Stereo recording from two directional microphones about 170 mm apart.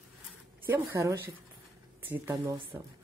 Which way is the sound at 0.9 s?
15° right (ahead or behind).